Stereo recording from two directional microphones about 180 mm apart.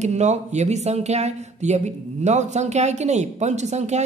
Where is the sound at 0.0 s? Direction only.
40° right (ahead or behind).